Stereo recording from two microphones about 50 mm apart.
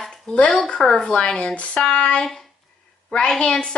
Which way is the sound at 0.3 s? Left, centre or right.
Centre.